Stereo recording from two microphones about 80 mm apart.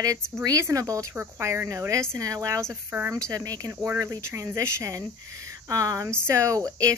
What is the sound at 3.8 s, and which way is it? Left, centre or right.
Speech, right.